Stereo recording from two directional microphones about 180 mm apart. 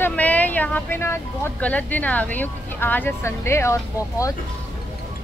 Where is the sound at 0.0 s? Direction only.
10° left (ahead or behind).